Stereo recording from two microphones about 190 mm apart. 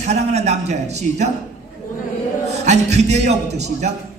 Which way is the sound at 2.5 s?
35° right (ahead or behind).